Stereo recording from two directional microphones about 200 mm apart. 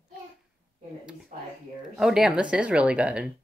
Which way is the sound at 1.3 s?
35° right (ahead or behind).